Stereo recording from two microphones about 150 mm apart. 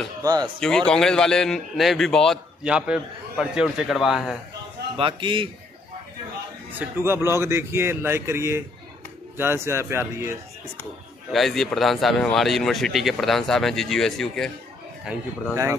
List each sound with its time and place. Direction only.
0.2 s speech: 25° right (ahead or behind)
0.6 s speech: 5° left (ahead or behind)
4.9 s a man's voice: 35° right (ahead or behind)
6.7 s speech: 15° right (ahead or behind)
11.3 s speech: centre (ahead or behind)